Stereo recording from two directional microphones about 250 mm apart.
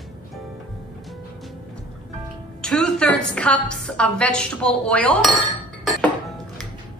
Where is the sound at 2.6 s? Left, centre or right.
Centre.